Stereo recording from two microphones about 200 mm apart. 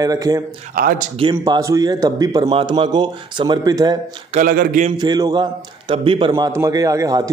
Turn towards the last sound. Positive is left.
turn(degrees=-15)  # may be behind; listen again after turning